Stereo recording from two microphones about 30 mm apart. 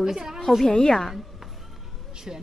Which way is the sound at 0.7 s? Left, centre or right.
Left.